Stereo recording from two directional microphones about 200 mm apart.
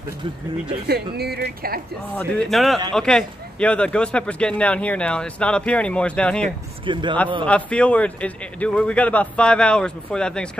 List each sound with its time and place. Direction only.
0.8 s speech: 55° right (ahead or behind)
2.1 s a man's voice: 5° left (ahead or behind)
6.9 s a man's voice: 25° right (ahead or behind)
7.4 s a man's voice: 5° left (ahead or behind)